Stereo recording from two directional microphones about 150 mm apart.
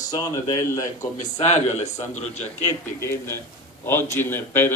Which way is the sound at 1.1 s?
50° left (ahead or behind).